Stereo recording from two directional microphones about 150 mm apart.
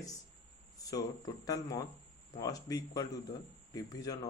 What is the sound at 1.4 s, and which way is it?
Speech, 25° left (ahead or behind).